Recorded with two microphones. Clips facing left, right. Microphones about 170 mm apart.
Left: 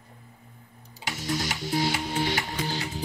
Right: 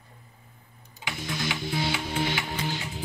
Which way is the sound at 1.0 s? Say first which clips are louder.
Left 3 dB; 40° left (ahead or behind).